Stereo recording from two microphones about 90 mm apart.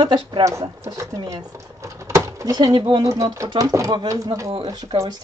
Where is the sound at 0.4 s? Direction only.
35° right (ahead or behind).